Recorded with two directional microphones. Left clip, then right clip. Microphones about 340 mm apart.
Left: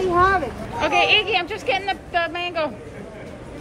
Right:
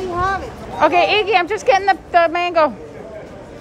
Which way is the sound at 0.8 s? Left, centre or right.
Centre.